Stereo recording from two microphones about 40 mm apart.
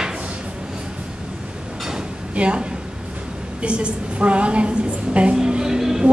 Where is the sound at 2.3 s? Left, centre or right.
Right.